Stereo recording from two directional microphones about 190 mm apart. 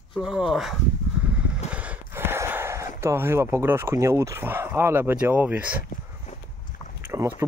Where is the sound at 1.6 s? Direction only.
5° right (ahead or behind).